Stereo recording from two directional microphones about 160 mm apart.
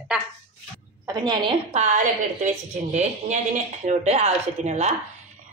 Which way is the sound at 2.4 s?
45° right (ahead or behind).